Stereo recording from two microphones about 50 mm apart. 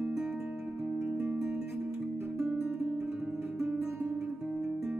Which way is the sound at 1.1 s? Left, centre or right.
Right.